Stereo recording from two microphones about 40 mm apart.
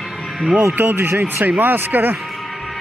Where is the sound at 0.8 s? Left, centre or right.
Right.